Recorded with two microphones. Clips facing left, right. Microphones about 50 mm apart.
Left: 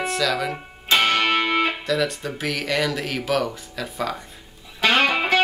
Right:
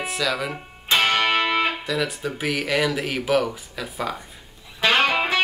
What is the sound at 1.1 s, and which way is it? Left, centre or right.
Music, centre.